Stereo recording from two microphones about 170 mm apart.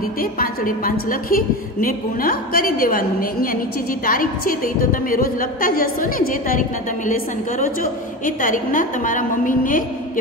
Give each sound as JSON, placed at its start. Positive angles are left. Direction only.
{"t": 0.2, "sound": "a woman's voice", "side_deg": 55}